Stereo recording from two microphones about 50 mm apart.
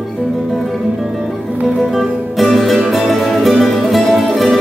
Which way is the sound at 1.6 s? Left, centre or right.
Centre.